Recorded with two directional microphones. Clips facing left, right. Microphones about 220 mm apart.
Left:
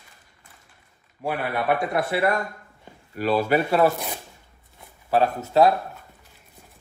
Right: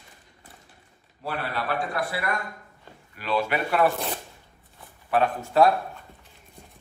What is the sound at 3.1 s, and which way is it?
Speech, 40° left (ahead or behind).